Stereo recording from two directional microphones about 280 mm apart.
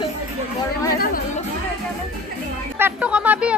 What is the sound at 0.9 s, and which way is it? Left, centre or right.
Speech, left.